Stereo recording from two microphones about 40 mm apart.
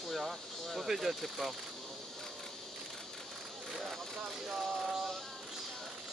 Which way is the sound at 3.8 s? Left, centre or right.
Centre.